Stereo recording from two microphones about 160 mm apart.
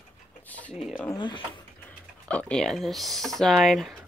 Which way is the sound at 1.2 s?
30° left (ahead or behind).